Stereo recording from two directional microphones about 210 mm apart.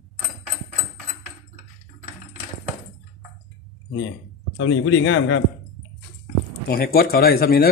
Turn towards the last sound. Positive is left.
turn(degrees=45)  # may be behind; listen again after turning